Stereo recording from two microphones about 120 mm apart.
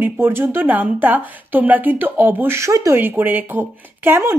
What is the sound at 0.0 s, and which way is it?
A woman's voice, 20° right (ahead or behind).